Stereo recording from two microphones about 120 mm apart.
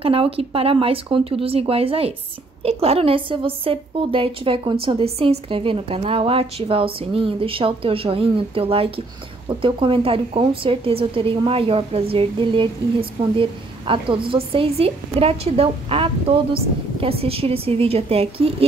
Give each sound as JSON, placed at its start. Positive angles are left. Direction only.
{"t": 0.0, "sound": "a woman's voice", "side_deg": -50}